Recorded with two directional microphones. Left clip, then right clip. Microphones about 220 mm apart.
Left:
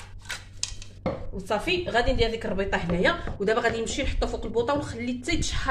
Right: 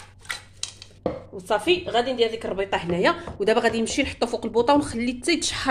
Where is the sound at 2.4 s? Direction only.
30° right (ahead or behind).